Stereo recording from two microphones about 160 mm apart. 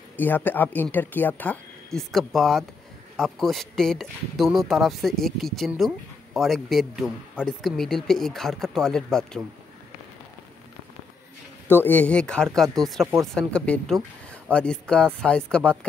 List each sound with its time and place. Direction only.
0.2 s speech: 10° left (ahead or behind)
11.6 s speech: 15° left (ahead or behind)
13.0 s speech: 15° right (ahead or behind)
13.3 s speech: 5° left (ahead or behind)